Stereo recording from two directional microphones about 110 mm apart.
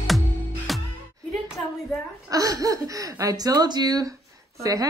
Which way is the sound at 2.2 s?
35° right (ahead or behind).